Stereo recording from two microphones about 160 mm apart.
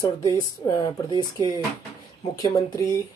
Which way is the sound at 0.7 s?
25° left (ahead or behind).